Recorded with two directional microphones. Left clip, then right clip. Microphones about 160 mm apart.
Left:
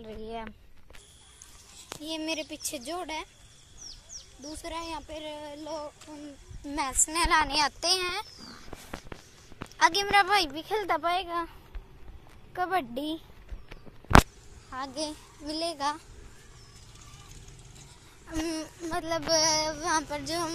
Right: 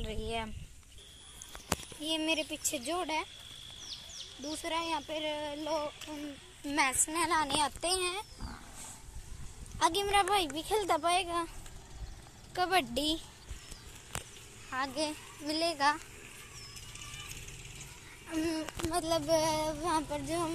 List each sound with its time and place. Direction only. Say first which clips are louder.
0.0 s speech: right 1 dB; centre (ahead or behind)
2.0 s speech: right 1 dB; 5° left (ahead or behind)
4.4 s speech: right 2 dB; 25° right (ahead or behind)
6.6 s speech: even; 10° left (ahead or behind)
9.8 s speech: left 6 dB; 5° right (ahead or behind)
12.5 s speech: left 1 dB; centre (ahead or behind)
14.7 s a child's voice: even; 15° left (ahead or behind)
18.2 s speech: left 1 dB; 5° left (ahead or behind)
18.9 s speech: left 3 dB; 10° right (ahead or behind)